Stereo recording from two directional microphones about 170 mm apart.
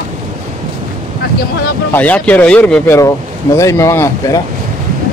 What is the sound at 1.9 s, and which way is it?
Speech, 10° left (ahead or behind).